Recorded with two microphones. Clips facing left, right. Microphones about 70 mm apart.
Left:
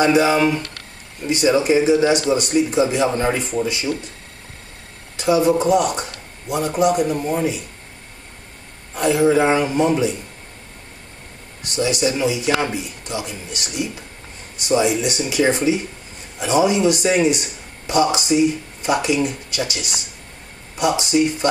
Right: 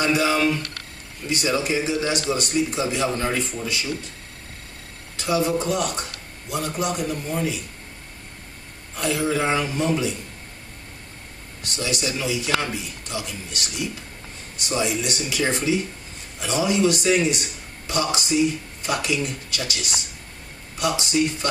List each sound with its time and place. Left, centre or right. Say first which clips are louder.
0.0 s a man's voice: left 5 dB; centre
5.1 s a man's voice: left 6 dB; centre
8.9 s a man's voice: left 8 dB; centre
11.6 s a man's voice: left 7 dB; centre